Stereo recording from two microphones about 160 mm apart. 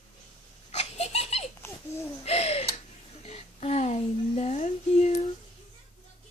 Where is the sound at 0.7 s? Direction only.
40° left (ahead or behind).